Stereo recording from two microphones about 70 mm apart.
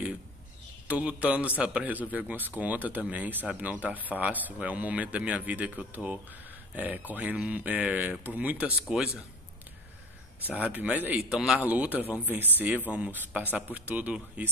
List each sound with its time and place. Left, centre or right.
0.8 s a man's voice: centre
8.8 s a man's voice: centre
10.4 s speech: right
11.1 s a man's voice: centre
11.6 s speech: right